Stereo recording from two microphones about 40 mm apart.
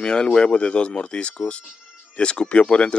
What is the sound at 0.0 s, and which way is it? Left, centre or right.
Speech, left.